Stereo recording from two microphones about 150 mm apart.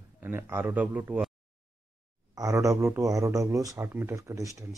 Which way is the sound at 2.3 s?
20° right (ahead or behind).